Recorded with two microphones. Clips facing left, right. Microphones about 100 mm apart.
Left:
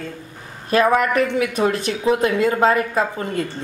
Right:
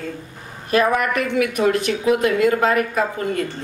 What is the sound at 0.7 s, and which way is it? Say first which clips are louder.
Speech: left 2 dB; 25° left (ahead or behind).